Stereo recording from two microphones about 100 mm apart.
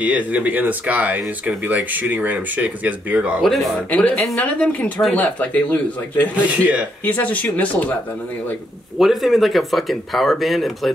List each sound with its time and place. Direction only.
0.0 s speech: 15° right (ahead or behind)
3.9 s speech: 15° left (ahead or behind)
6.5 s speech: 15° right (ahead or behind)
7.1 s speech: 15° left (ahead or behind)
8.9 s speech: centre (ahead or behind)